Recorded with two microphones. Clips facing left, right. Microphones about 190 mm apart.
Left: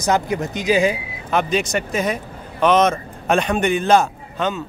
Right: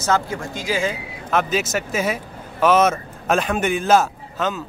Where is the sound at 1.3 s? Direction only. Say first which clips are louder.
Left 1 dB; centre (ahead or behind).